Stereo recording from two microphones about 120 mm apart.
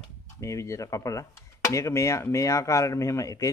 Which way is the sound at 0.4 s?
25° left (ahead or behind).